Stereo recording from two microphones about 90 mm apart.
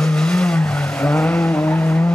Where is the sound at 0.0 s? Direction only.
10° left (ahead or behind).